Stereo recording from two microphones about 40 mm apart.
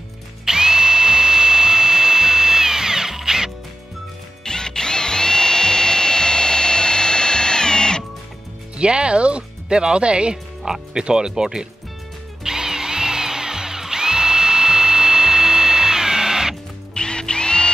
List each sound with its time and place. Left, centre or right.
0.5 s drill: centre
4.5 s drill: centre
8.7 s speech: right
10.3 s speech: centre
12.4 s music: centre
16.9 s drill: left